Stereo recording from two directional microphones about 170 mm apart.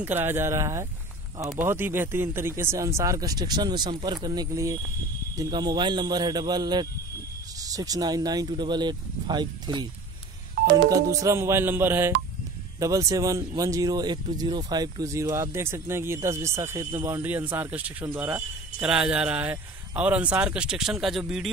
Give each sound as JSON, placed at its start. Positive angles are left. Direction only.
{"t": 0.0, "sound": "speech", "side_deg": -10}
{"t": 10.9, "sound": "speech", "side_deg": -20}